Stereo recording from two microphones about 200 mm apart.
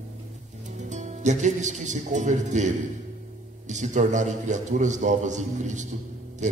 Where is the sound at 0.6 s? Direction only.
35° right (ahead or behind).